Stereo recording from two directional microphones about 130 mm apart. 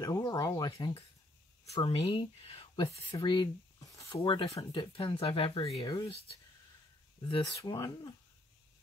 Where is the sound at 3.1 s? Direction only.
35° left (ahead or behind).